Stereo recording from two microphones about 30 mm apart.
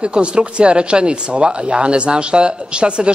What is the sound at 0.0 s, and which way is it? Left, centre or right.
A man's voice, right.